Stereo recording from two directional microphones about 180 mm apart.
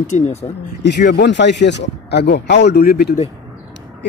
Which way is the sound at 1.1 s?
75° left (ahead or behind).